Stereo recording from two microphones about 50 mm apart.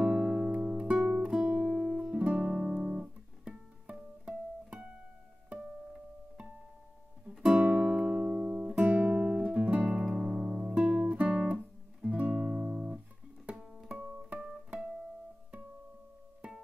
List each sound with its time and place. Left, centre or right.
0.0 s music: centre; by 1.8 s right
1.8 s music: centre
8.7 s guitar: right
10.0 s music: centre
10.9 s guitar: right
13.8 s music: right